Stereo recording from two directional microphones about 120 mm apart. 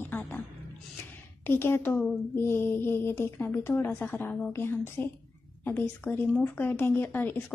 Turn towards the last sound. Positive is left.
turn(degrees=15)  # may be behind; listen again after turning